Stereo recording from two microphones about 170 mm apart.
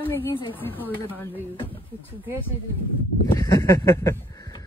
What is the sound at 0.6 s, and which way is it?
Speech, 10° left (ahead or behind).